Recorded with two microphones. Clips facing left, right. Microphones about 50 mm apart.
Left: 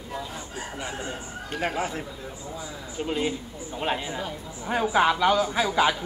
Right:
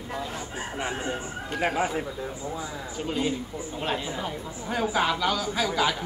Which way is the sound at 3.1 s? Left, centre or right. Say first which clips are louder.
Even; centre.